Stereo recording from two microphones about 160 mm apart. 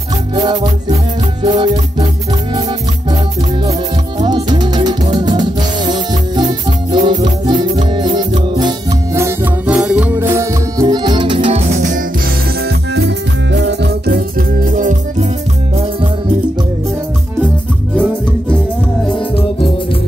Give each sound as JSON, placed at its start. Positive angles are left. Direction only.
{"t": 0.4, "sound": "music", "side_deg": -25}
{"t": 4.2, "sound": "music", "side_deg": -25}
{"t": 12.9, "sound": "music", "side_deg": -90}
{"t": 19.0, "sound": "music", "side_deg": 30}